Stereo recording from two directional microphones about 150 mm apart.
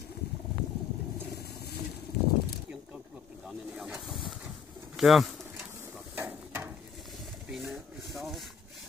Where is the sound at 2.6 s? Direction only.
5° right (ahead or behind).